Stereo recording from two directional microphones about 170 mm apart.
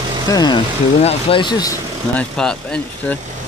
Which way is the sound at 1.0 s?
35° left (ahead or behind).